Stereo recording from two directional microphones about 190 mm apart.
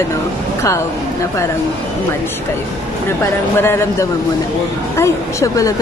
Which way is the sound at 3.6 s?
15° left (ahead or behind).